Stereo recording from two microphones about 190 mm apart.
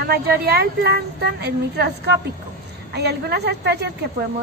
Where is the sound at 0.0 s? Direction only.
55° right (ahead or behind).